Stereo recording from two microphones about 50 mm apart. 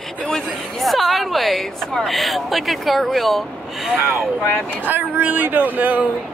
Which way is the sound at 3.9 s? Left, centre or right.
Right.